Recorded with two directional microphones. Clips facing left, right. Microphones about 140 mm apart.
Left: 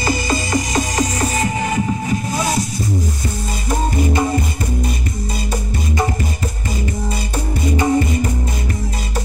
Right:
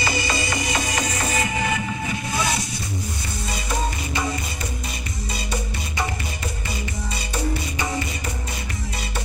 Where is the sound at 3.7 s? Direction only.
50° left (ahead or behind).